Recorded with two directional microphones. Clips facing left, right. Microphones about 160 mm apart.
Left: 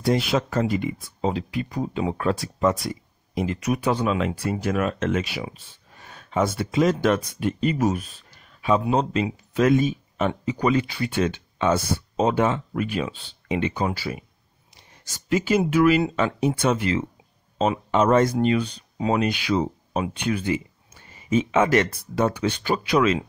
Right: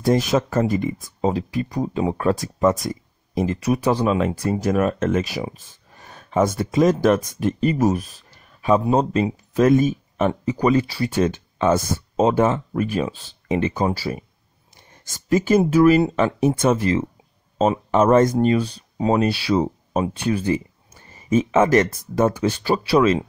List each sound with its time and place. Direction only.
0.0 s speech: 45° right (ahead or behind)
10.1 s speech: 30° right (ahead or behind)
14.8 s a sound: 50° right (ahead or behind)
15.6 s speech: 35° right (ahead or behind)